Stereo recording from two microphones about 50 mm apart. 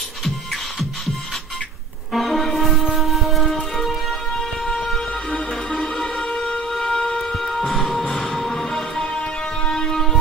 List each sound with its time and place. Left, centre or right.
2.1 s music: centre
4.6 s music: centre
6.1 s music: centre